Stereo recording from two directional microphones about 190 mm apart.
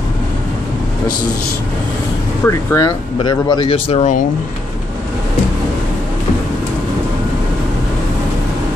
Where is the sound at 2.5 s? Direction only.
20° left (ahead or behind).